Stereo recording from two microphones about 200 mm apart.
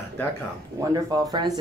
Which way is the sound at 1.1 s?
20° right (ahead or behind).